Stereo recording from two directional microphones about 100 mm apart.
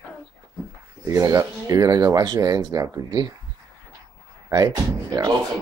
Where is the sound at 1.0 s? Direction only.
35° right (ahead or behind).